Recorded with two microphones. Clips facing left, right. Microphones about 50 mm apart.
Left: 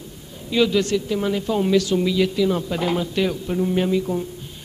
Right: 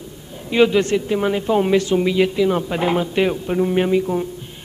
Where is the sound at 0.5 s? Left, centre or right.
Right.